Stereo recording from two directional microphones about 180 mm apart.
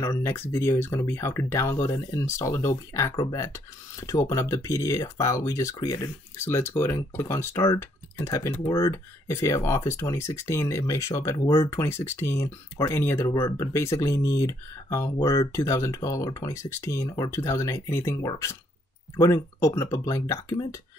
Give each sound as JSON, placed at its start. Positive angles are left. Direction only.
{"t": 0.0, "sound": "speech", "side_deg": 15}